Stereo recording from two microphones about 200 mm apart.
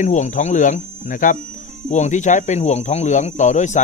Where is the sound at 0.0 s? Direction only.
35° left (ahead or behind).